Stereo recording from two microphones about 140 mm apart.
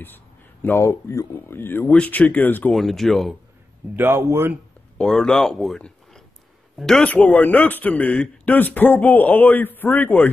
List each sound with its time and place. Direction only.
0.0 s a man's voice: 15° left (ahead or behind)
2.7 s speech: centre (ahead or behind)
3.9 s speech: 15° right (ahead or behind)
4.9 s a man's voice: 5° left (ahead or behind)